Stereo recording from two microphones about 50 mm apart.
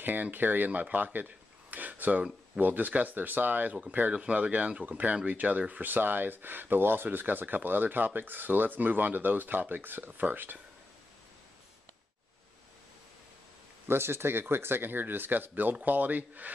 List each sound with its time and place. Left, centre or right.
0.0 s speech: right
4.1 s speech: right
13.8 s speech: right